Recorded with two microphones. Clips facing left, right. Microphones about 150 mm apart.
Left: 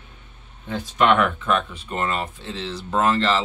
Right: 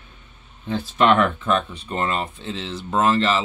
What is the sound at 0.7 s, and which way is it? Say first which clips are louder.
Speech: right 1 dB; 30° right (ahead or behind).